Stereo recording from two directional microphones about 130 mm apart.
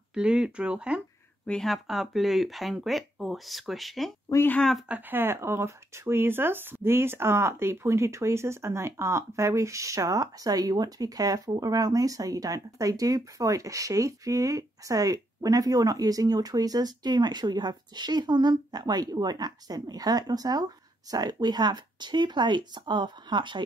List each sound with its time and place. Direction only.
0.1 s speech: 5° right (ahead or behind)
1.4 s speech: 5° left (ahead or behind)
4.3 s speech: 15° left (ahead or behind)
4.8 s speech: 15° right (ahead or behind); by 23.6 s 35° right (ahead or behind)